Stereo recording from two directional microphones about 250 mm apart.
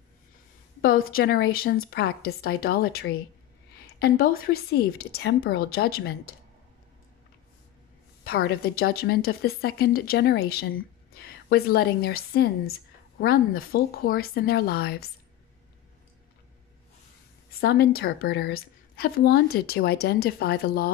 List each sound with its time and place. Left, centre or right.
0.8 s a woman's voice: left
8.2 s a woman's voice: left
17.5 s a woman's voice: left